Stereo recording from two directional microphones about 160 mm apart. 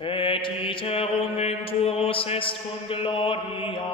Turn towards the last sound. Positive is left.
turn(degrees=35)  # may be behind; listen again after turning